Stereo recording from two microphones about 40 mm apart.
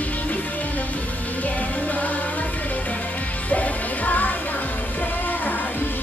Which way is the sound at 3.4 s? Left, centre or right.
Left.